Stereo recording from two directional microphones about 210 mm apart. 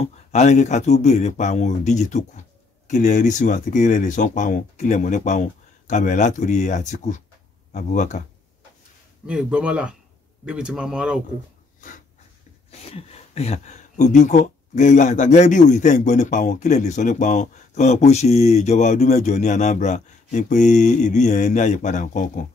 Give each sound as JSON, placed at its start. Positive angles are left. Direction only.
{"t": 0.3, "sound": "speech", "side_deg": 35}
{"t": 9.2, "sound": "speech", "side_deg": -5}
{"t": 12.9, "sound": "speech", "side_deg": 30}